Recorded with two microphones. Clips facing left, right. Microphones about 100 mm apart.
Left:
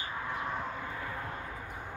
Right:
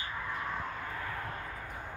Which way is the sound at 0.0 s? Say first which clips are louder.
Left 1 dB; 15° left (ahead or behind).